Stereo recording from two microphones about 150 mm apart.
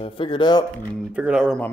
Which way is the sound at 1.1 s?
10° right (ahead or behind).